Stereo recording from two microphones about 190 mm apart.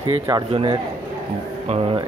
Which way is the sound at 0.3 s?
25° right (ahead or behind).